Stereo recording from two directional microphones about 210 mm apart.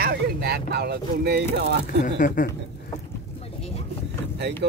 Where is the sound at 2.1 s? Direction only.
40° left (ahead or behind).